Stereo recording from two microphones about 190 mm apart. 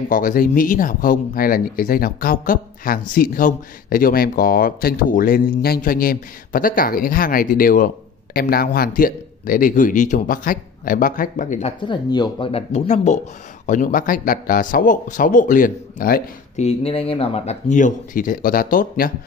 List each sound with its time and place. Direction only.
0.1 s speech: 45° left (ahead or behind)
11.8 s speech: 25° left (ahead or behind); by 16.6 s 50° left (ahead or behind)
16.6 s speech: 30° left (ahead or behind); by 19.1 s 50° left (ahead or behind)